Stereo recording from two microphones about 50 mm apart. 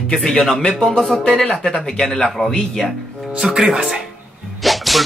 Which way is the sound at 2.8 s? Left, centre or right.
Centre.